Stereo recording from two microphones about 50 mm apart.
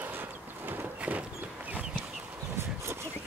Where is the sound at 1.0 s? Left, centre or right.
Right.